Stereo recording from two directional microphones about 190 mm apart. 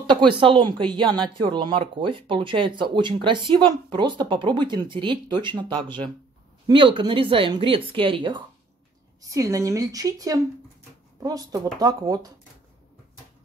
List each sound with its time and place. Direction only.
0.0 s speech: 25° right (ahead or behind)
6.7 s a woman's voice: 25° right (ahead or behind)